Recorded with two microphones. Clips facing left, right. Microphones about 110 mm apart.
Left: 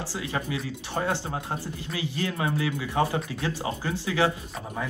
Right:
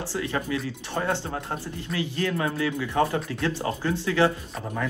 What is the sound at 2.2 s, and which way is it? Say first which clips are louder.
Speech: right 1 dB; 20° left (ahead or behind).